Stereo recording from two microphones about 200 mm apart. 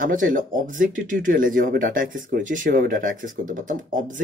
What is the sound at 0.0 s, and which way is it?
Speech, 40° right (ahead or behind).